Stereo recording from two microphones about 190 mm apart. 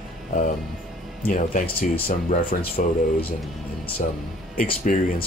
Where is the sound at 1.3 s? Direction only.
45° left (ahead or behind).